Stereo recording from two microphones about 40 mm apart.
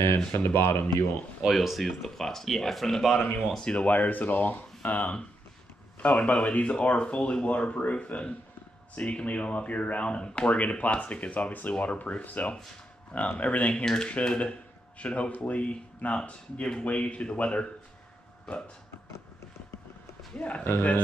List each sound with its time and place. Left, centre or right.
0.3 s speech: left
1.4 s speech: centre
3.6 s speech: left
13.8 s speech: centre
18.5 s speech: centre
20.3 s speech: left